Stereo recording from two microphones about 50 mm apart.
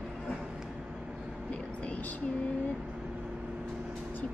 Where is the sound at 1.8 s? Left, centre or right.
Left.